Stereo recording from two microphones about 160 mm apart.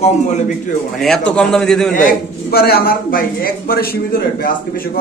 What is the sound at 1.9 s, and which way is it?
A man's voice, 65° left (ahead or behind).